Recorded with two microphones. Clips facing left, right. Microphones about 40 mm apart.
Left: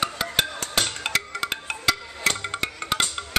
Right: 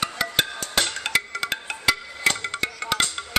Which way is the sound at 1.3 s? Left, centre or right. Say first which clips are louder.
Even; centre.